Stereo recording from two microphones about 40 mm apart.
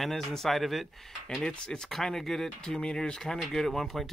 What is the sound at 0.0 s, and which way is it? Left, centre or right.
Speech, centre.